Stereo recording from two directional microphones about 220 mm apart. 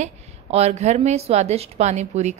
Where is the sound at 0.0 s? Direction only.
30° right (ahead or behind).